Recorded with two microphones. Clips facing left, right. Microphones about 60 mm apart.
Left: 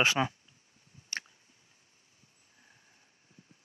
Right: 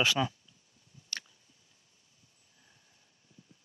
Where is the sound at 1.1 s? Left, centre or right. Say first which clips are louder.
Left 4 dB; centre.